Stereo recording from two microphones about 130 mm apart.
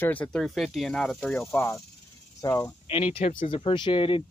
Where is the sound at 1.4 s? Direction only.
20° left (ahead or behind).